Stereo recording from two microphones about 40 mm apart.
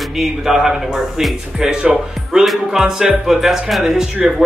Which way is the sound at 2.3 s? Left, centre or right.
Centre.